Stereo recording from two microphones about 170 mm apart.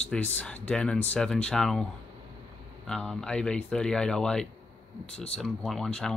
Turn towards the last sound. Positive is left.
turn(degrees=5)  # may be behind; listen again after turning